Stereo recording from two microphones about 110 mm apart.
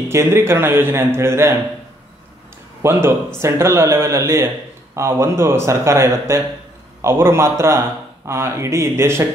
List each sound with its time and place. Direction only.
0.1 s a man's voice: 25° right (ahead or behind)
2.8 s a man's voice: 20° right (ahead or behind)